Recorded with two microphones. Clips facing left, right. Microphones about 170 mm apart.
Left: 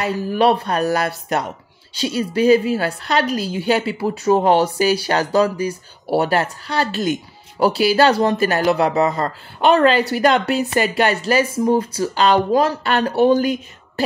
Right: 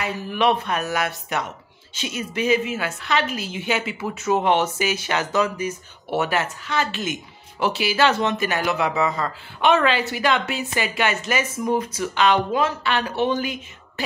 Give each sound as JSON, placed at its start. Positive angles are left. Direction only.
{"t": 0.0, "sound": "a woman's voice", "side_deg": 35}